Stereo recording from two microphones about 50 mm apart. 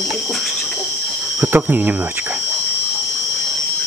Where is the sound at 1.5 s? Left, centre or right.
Right.